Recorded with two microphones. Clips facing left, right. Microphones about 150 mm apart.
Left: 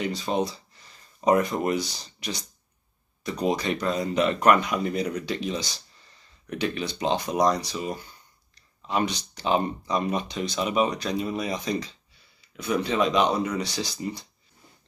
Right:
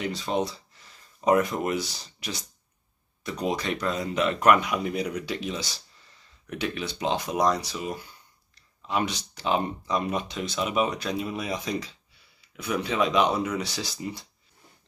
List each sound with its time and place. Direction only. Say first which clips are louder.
0.0 s speech: left 1 dB; centre (ahead or behind)